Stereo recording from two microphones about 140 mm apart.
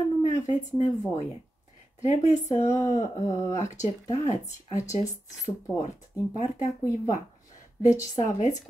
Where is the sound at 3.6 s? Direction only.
60° left (ahead or behind).